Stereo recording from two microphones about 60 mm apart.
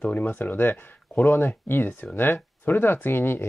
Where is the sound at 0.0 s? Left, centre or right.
Left.